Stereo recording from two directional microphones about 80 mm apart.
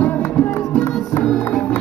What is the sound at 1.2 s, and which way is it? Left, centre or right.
Music, centre.